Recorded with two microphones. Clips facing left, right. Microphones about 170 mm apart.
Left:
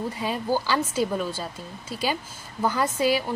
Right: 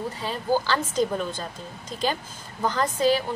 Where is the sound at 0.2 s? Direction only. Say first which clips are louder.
Right 2 dB; 10° left (ahead or behind).